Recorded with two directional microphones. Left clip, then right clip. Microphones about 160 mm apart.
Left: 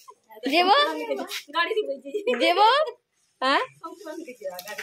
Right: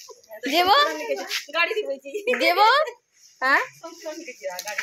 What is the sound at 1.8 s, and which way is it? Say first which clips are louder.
Speech: even; 90° left.